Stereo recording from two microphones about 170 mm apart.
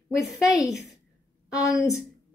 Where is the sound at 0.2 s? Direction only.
5° right (ahead or behind).